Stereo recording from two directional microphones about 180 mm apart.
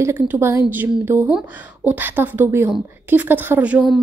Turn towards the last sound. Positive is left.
turn(degrees=-5)  # may be behind; listen again after turning